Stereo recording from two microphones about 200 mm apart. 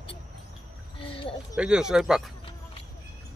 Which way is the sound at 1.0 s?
25° left (ahead or behind).